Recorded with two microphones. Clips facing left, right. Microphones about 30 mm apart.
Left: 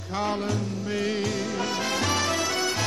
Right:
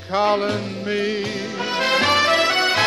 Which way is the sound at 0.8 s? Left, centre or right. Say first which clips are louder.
Right 5 dB; right.